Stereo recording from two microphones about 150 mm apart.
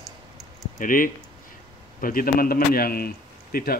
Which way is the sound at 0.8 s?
65° left (ahead or behind).